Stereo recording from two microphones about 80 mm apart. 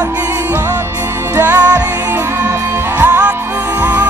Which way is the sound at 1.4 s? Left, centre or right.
Right.